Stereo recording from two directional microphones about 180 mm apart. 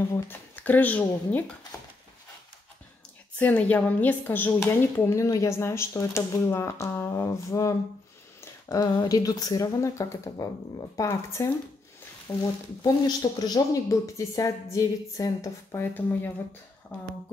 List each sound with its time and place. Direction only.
0.1 s speech: 10° left (ahead or behind)
3.3 s a woman's voice: 10° left (ahead or behind)